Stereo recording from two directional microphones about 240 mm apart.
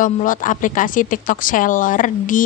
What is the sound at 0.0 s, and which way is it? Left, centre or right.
A woman's voice, left.